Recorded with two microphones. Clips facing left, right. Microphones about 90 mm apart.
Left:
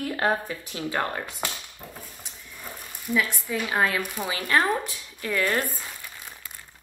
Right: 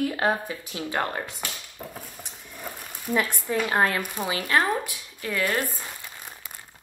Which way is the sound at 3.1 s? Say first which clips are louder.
Right 1 dB; 45° right (ahead or behind).